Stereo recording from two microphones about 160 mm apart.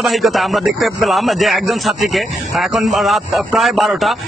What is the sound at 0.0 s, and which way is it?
A man's voice, centre (ahead or behind).